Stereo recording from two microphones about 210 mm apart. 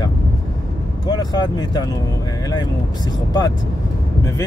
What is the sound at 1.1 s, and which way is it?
Speech, 20° left (ahead or behind).